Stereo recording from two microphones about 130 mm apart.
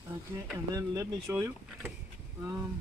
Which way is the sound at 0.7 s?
25° right (ahead or behind).